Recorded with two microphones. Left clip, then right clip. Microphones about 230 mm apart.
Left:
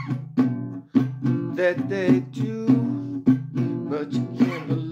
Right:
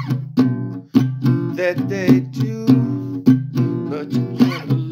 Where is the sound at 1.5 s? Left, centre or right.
Right.